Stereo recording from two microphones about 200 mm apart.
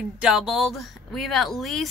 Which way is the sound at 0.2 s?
Centre (ahead or behind).